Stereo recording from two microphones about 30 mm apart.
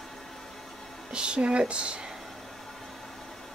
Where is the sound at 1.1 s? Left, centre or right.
Right.